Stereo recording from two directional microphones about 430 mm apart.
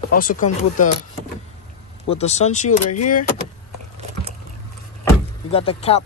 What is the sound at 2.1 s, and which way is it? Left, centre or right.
Speech, centre.